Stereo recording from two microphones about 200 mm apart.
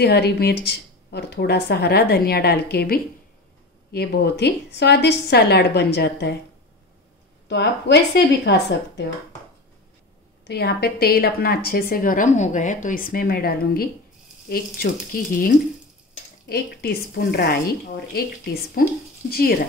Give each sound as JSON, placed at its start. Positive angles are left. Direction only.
{"t": 0.0, "sound": "a woman's voice", "side_deg": 50}
{"t": 7.4, "sound": "a woman's voice", "side_deg": 60}
{"t": 10.4, "sound": "speech", "side_deg": 55}